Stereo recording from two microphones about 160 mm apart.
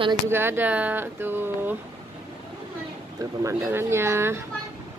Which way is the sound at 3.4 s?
15° right (ahead or behind).